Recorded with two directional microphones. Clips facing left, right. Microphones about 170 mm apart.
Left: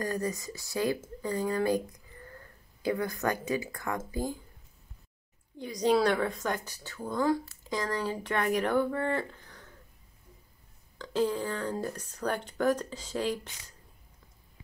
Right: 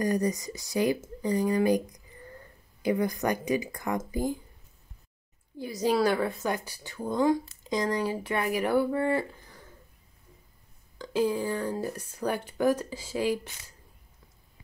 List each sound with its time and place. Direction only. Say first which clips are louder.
0.0 s speech: right 5 dB; 15° right (ahead or behind)
5.6 s speech: even; 5° right (ahead or behind)
11.0 s speech: right 2 dB; 10° right (ahead or behind)